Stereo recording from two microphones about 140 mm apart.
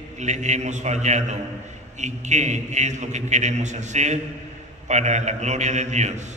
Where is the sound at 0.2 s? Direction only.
55° right (ahead or behind).